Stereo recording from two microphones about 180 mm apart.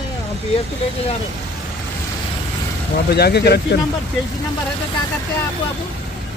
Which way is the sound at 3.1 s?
65° left (ahead or behind).